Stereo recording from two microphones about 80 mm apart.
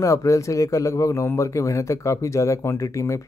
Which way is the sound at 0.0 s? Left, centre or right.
Left.